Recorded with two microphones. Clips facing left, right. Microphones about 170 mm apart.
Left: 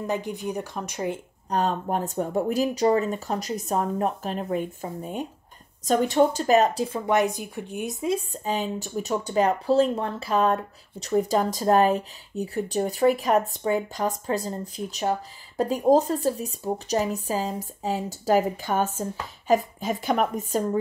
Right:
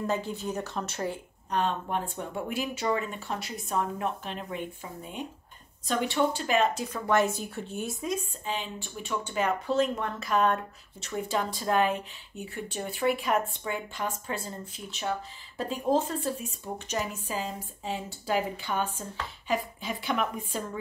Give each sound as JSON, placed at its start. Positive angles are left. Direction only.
{"t": 0.0, "sound": "speech", "side_deg": 15}
{"t": 1.5, "sound": "speech", "side_deg": 40}
{"t": 7.1, "sound": "speech", "side_deg": 15}
{"t": 8.3, "sound": "a woman's voice", "side_deg": 40}